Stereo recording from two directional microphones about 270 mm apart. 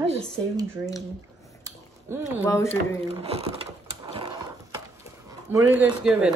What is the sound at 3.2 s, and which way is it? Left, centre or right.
Speech, right.